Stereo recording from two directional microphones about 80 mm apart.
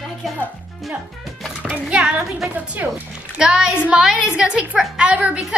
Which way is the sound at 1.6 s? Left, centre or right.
Centre.